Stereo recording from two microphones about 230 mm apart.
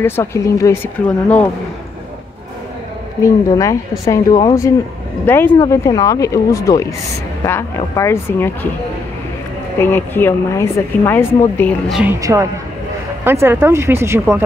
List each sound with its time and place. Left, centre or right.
0.0 s a woman's voice: centre
3.2 s a woman's voice: centre
9.8 s a woman's voice: centre
11.9 s speech: centre